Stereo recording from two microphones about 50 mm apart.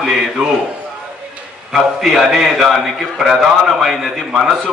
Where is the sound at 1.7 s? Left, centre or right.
Centre.